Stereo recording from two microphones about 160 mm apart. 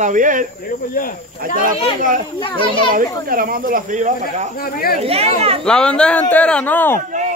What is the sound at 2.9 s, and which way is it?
Speech, 60° right (ahead or behind).